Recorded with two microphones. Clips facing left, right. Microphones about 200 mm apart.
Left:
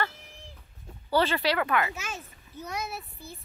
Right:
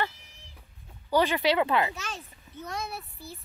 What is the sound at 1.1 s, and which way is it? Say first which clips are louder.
Speech: right 2 dB; 15° right (ahead or behind).